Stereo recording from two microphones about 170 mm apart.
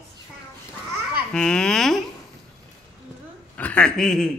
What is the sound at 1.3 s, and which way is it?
Speech, 5° left (ahead or behind).